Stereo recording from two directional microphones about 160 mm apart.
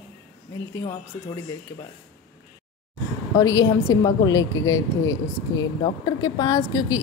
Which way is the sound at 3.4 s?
20° left (ahead or behind).